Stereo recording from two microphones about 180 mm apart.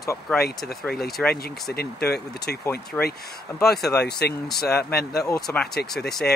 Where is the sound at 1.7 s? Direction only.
60° left (ahead or behind).